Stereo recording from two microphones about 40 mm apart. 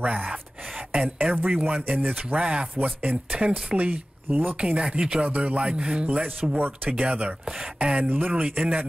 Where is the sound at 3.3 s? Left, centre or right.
Right.